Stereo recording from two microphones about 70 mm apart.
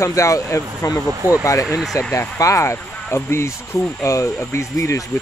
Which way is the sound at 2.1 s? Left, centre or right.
Left.